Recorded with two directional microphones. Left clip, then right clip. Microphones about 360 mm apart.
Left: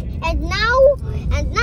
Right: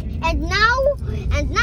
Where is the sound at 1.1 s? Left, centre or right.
Centre.